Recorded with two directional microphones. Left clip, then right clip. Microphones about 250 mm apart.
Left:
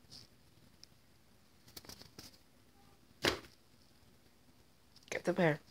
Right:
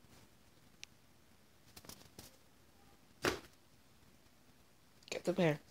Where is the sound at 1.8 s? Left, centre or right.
Left.